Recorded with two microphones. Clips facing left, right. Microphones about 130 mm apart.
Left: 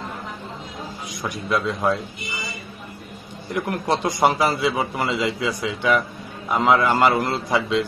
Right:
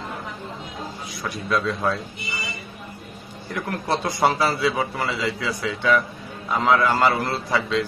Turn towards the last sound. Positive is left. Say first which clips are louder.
# left 2 dB
turn(degrees=15)  # may be behind; listen again after turning